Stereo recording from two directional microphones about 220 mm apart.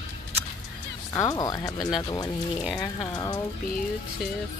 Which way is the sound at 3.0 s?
20° left (ahead or behind).